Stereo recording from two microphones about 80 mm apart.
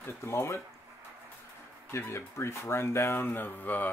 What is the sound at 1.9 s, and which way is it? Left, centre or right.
Speech, left.